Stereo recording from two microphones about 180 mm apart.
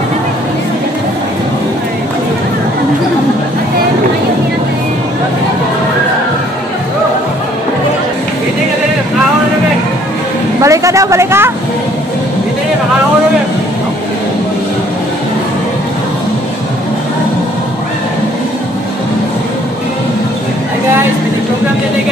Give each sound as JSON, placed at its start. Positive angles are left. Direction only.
{"t": 10.6, "sound": "speech", "side_deg": -15}